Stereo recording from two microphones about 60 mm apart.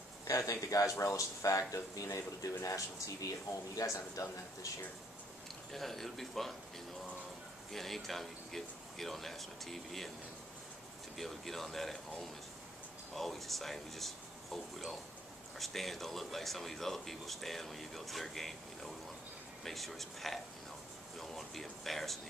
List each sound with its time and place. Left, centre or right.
0.3 s speech: left
5.7 s speech: centre
7.7 s speech: centre
11.1 s speech: centre